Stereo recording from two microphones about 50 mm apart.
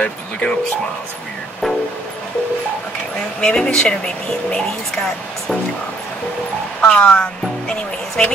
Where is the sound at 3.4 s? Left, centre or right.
Centre.